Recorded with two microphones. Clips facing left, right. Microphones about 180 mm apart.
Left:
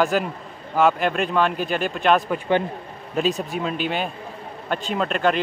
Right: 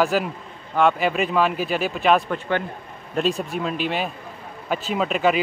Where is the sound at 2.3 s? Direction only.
20° left (ahead or behind).